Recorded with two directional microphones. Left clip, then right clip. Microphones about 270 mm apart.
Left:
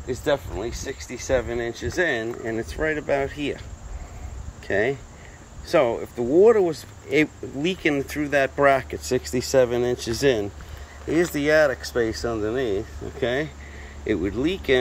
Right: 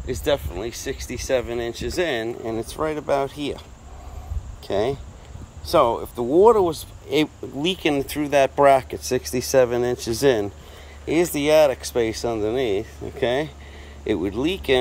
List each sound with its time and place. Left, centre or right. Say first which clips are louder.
0.0 s speech: right 1 dB; centre
4.6 s speech: even; centre
9.2 s speech: right 1 dB; right
9.6 s speech: right 1 dB; centre
9.9 s speech: right 2 dB; right
11.1 s speech: right 2 dB; centre